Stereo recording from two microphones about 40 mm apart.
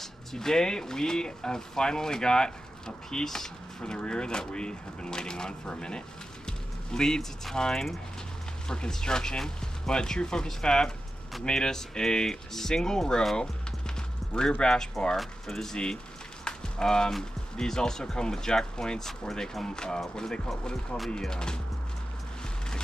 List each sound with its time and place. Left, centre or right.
0.0 s speech: centre
13.4 s music: centre
14.6 s speech: centre
16.4 s a sound: centre
17.6 s speech: centre